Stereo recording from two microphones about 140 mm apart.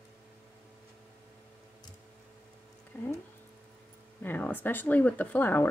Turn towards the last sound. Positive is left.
turn(degrees=15)  # may be behind; listen again after turning